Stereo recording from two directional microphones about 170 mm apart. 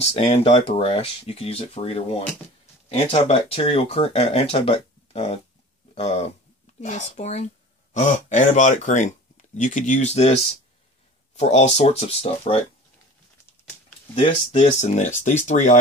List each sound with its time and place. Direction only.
0.0 s speech: 35° left (ahead or behind)
11.3 s speech: 40° left (ahead or behind)
14.1 s speech: 35° left (ahead or behind)